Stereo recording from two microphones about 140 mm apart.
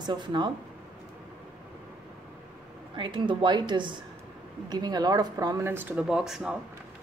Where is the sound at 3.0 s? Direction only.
35° right (ahead or behind); by 6.6 s 5° right (ahead or behind).